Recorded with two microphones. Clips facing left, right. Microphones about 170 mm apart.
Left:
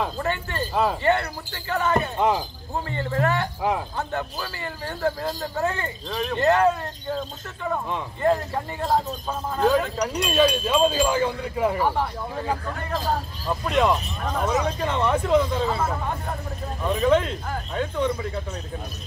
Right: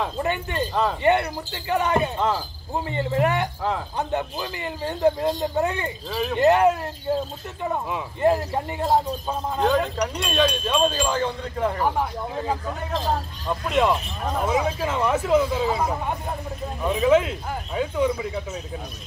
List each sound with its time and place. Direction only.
0.2 s speech: 15° right (ahead or behind)
2.1 s wind chime: 15° left (ahead or behind)
2.7 s speech: 15° right (ahead or behind)
6.0 s speech: 5° right (ahead or behind)
6.3 s speech: 20° right (ahead or behind)
8.2 s speech: 20° right (ahead or behind)
8.8 s speech: centre (ahead or behind)
10.0 s wind chime: 5° left (ahead or behind)
11.9 s speech: 15° right (ahead or behind)
12.9 s speech: centre (ahead or behind)
16.8 s speech: 5° right (ahead or behind)